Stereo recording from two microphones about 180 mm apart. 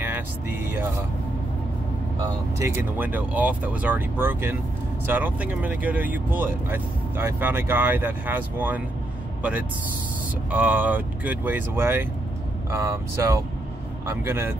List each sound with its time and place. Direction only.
0.0 s vehicle: 10° right (ahead or behind)
2.6 s speech: 10° right (ahead or behind)